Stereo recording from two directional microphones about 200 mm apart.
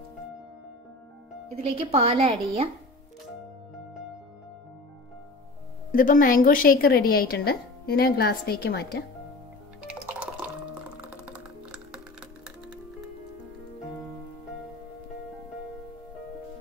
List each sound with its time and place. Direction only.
1.5 s speech: 30° right (ahead or behind)
5.9 s a woman's voice: 45° left (ahead or behind)
9.8 s music: 5° right (ahead or behind)